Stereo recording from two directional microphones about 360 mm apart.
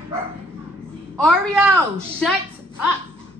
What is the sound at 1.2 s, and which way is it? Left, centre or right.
A woman's voice, centre.